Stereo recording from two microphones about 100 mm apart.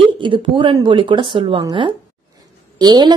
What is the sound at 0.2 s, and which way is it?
A woman's voice, 50° right (ahead or behind).